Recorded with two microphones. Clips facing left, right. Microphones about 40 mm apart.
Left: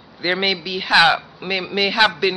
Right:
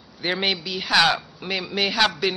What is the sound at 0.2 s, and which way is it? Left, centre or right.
A man's voice, centre.